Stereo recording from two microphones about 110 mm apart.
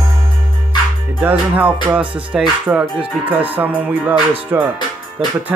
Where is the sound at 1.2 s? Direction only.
15° right (ahead or behind).